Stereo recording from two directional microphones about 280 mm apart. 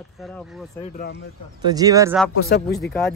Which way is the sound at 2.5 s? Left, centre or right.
Left.